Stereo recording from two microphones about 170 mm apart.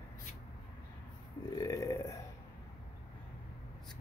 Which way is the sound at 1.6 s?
20° left (ahead or behind).